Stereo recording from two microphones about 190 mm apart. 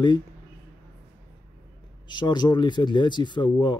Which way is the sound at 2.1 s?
25° left (ahead or behind).